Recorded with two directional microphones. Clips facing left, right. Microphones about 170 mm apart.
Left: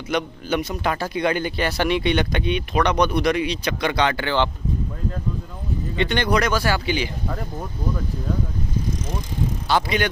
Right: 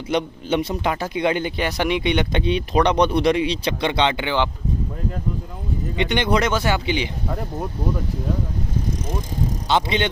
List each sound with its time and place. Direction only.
0.1 s a man's voice: 30° right (ahead or behind)
2.4 s a man's voice: 30° right (ahead or behind); by 4.5 s 15° right (ahead or behind)
5.9 s a man's voice: 20° right (ahead or behind)
9.7 s a man's voice: 25° right (ahead or behind)